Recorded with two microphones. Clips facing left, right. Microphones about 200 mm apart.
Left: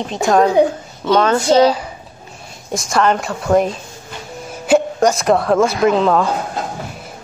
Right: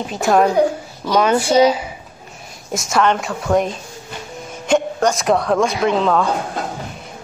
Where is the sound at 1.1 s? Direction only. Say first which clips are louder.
Left 2 dB; 10° right (ahead or behind).